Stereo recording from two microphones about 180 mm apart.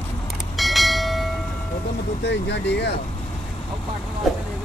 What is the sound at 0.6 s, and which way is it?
Train, centre (ahead or behind).